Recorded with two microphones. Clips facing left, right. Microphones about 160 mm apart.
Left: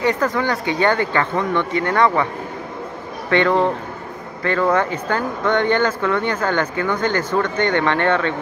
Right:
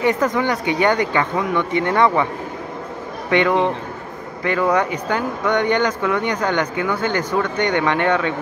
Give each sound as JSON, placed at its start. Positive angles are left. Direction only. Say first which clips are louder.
{"t": 0.0, "sound": "speech", "louder": "right 1 dB", "side_deg": -20}
{"t": 3.3, "sound": "speech", "louder": "even", "side_deg": -15}